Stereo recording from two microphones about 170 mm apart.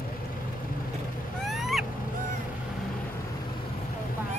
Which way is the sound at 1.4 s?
Centre (ahead or behind).